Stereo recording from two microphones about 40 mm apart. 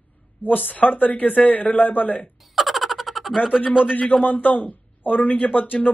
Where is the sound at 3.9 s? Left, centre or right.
Left.